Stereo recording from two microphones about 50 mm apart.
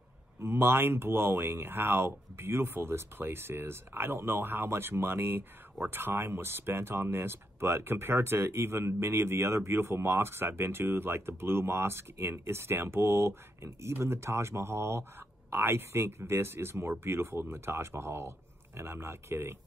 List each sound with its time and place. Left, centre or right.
0.4 s speech: right